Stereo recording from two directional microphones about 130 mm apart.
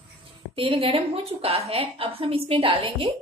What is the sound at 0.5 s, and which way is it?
A woman's voice, 45° right (ahead or behind).